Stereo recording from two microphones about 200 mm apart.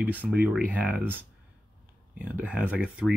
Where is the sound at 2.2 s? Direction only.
5° right (ahead or behind).